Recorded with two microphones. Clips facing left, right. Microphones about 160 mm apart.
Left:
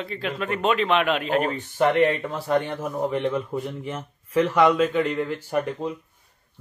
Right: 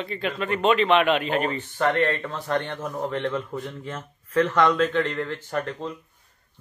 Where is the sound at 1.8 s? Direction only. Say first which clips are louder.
Left 3 dB; 15° left (ahead or behind).